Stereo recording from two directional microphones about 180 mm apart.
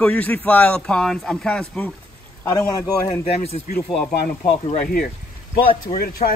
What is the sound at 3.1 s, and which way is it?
Speech, 35° left (ahead or behind).